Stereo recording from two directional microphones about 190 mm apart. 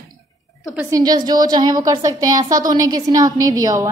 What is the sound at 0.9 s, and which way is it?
A woman's voice, 20° right (ahead or behind).